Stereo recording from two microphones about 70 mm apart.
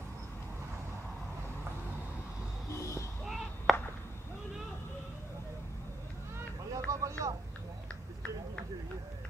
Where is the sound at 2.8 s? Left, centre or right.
Left.